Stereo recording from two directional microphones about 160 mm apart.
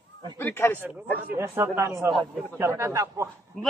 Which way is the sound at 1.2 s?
15° right (ahead or behind).